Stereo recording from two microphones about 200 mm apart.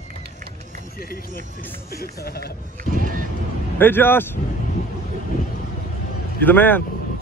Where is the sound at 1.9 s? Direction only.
50° left (ahead or behind).